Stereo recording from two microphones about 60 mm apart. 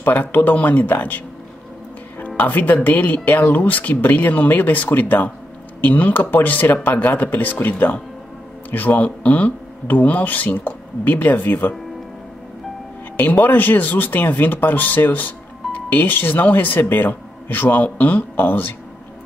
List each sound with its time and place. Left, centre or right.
0.0 s speech: left
13.1 s speech: left